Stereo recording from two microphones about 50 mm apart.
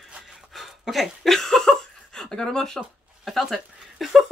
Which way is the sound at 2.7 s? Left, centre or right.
Centre.